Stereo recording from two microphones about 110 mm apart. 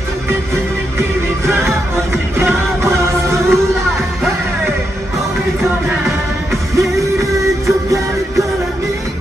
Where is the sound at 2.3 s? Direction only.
25° right (ahead or behind).